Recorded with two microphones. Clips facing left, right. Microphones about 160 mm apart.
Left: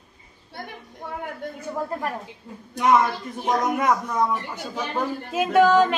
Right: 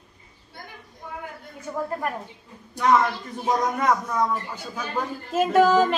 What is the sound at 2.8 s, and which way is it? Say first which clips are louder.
Speech: left 1 dB; 20° left (ahead or behind).